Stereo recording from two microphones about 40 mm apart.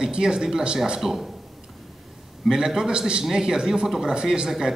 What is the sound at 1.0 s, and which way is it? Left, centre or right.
Speech, centre.